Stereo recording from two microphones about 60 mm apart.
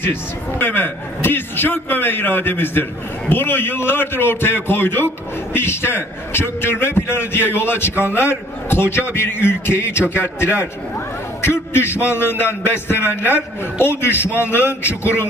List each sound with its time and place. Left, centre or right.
0.0 s a man's voice: left